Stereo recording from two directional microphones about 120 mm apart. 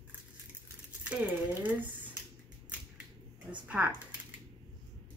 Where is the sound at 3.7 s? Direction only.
10° right (ahead or behind).